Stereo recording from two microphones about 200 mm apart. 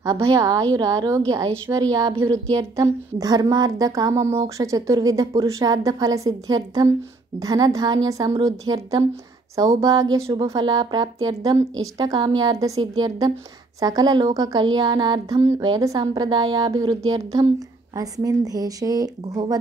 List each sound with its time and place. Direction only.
0.0 s a woman's voice: 15° right (ahead or behind)